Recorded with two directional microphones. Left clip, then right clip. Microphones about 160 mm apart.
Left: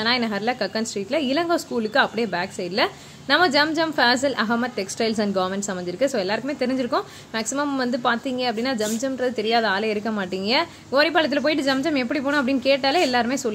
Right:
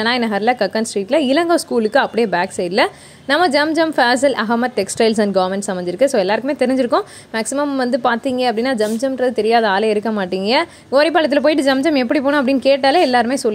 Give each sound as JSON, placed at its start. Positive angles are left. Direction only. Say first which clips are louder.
{"t": 0.0, "sound": "a woman's voice", "louder": "right 6 dB", "side_deg": -45}